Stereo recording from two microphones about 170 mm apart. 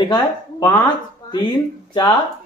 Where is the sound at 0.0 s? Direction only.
25° left (ahead or behind).